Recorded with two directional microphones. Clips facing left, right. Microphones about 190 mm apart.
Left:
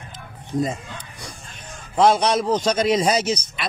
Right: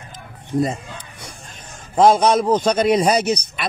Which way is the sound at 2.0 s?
50° right (ahead or behind).